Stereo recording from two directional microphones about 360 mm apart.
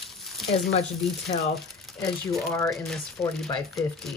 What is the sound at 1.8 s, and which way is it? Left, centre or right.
Speech, centre.